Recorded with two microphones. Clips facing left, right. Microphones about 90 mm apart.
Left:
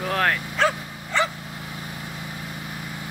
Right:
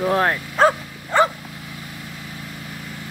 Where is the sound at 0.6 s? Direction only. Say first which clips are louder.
Right 8 dB; 40° right (ahead or behind).